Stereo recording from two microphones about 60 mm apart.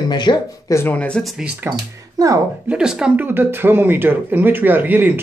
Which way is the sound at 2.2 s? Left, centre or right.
Right.